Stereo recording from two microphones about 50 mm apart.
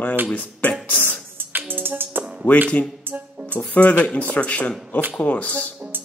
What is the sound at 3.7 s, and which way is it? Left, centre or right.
Speech, left.